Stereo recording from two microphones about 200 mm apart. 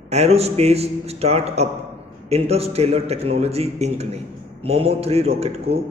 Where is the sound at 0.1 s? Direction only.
30° right (ahead or behind).